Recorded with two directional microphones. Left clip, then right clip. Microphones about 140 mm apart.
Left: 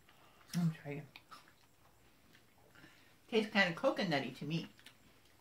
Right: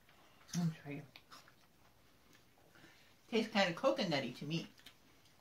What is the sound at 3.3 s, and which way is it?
Speech, 5° right (ahead or behind).